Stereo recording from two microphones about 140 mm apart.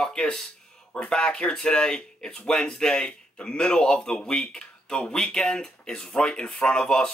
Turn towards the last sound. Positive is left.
turn(degrees=5)  # may be behind; listen again after turning